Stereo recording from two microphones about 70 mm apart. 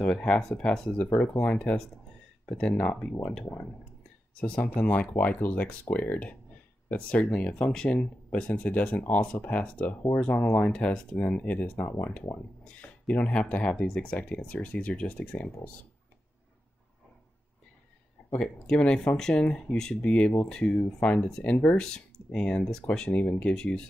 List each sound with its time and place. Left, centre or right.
0.0 s speech: centre
4.4 s speech: centre
11.8 s speech: left
13.0 s speech: centre
13.3 s speech: left
18.4 s speech: centre
21.0 s speech: centre